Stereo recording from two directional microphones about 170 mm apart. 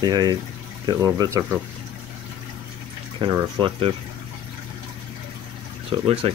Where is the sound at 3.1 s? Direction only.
25° right (ahead or behind).